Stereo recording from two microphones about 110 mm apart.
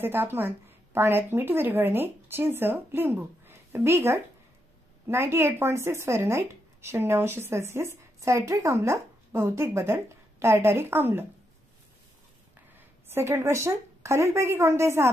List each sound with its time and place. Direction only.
0.0 s speech: 20° right (ahead or behind)
13.1 s speech: 25° right (ahead or behind)